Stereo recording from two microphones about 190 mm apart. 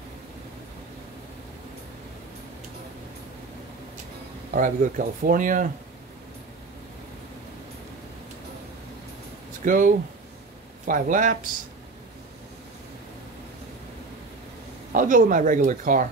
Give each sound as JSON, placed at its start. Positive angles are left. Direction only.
{"t": 4.5, "sound": "speech", "side_deg": -45}
{"t": 9.7, "sound": "speech", "side_deg": -45}
{"t": 14.9, "sound": "speech", "side_deg": -45}